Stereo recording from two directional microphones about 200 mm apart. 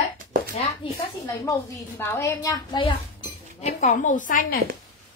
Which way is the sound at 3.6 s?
35° left (ahead or behind).